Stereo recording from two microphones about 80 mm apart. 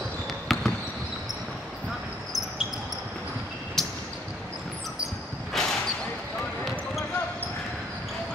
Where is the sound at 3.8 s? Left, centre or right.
Centre.